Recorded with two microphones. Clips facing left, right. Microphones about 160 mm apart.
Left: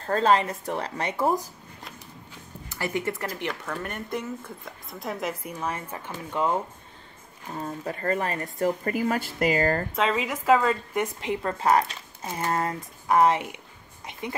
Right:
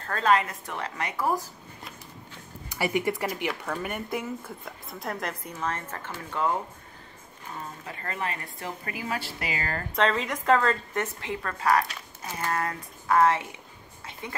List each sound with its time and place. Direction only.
0.0 s speech: 30° left (ahead or behind)
2.7 s speech: 15° right (ahead or behind); by 6.5 s 15° left (ahead or behind)
7.8 s speech: 40° left (ahead or behind)
9.9 s speech: 5° left (ahead or behind)